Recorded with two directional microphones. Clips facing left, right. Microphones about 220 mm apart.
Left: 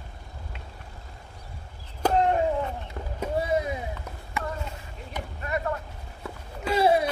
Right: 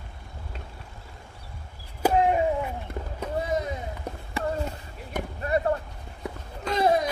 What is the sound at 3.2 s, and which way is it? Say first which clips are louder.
Rowboat: left 2 dB; 10° left (ahead or behind).